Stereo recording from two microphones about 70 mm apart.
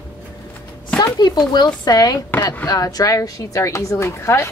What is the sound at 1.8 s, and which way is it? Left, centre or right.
A woman's voice, left.